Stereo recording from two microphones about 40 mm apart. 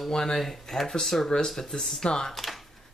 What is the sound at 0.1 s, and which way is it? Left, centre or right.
Speech, centre.